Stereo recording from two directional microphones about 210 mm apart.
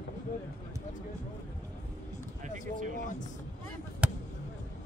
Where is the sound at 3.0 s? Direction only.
35° left (ahead or behind).